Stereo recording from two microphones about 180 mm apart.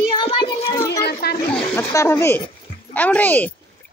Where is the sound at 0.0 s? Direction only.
30° left (ahead or behind).